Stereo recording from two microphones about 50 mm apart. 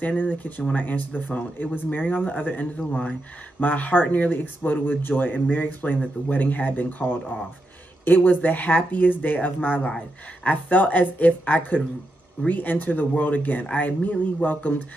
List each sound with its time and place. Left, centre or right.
0.0 s speech: left